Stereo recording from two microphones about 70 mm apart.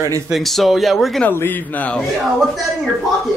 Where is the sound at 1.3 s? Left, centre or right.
Left.